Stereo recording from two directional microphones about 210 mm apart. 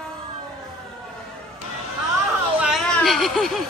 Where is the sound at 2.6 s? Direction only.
Centre (ahead or behind).